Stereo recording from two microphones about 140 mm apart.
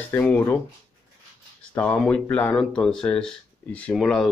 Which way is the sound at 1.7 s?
10° left (ahead or behind).